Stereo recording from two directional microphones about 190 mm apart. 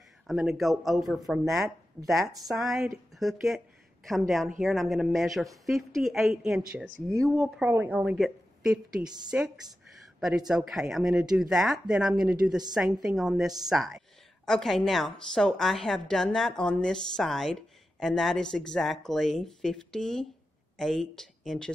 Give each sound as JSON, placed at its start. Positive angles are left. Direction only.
{"t": 0.3, "sound": "a woman's voice", "side_deg": 0}
{"t": 9.0, "sound": "a woman's voice", "side_deg": -20}
{"t": 10.2, "sound": "a woman's voice", "side_deg": -5}